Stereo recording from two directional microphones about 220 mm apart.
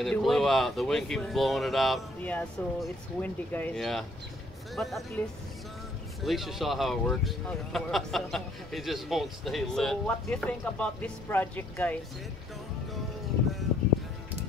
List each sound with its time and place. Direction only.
0.0 s speech: centre (ahead or behind)
6.2 s speech: centre (ahead or behind)